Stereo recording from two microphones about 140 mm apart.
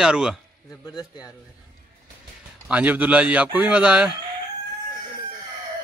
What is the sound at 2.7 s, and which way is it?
A man's voice, 10° right (ahead or behind).